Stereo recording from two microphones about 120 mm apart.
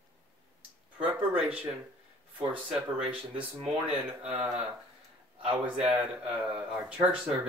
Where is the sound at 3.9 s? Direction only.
55° right (ahead or behind).